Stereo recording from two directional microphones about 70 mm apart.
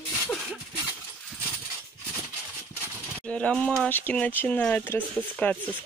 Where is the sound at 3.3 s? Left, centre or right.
Centre.